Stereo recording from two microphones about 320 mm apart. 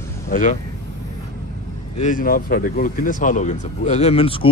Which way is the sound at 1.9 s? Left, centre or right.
Left.